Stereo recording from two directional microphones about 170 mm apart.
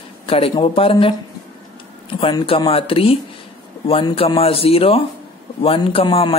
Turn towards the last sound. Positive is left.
turn(degrees=30)  # may be behind; listen again after turning